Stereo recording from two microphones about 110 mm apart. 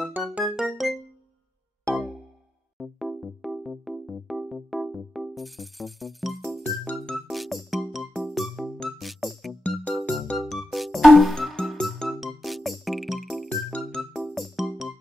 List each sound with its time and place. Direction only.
0.2 s music: 15° right (ahead or behind)
0.6 s music: centre (ahead or behind)
9.6 s music: 10° left (ahead or behind)
9.9 s music: centre (ahead or behind)